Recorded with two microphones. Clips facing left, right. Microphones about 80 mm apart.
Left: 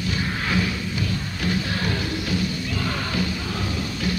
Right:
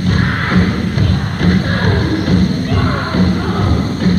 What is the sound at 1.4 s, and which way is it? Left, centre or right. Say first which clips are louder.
Music: right 10 dB; right.